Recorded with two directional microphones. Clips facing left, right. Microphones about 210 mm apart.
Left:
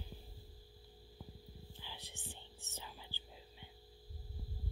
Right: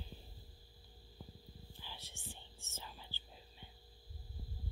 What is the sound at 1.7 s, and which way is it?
Whispering, 15° left (ahead or behind).